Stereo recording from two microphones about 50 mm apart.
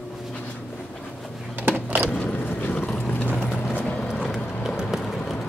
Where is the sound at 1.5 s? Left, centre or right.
Right.